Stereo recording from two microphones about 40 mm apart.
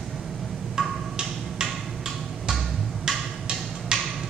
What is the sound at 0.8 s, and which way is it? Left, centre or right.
Wood block, centre.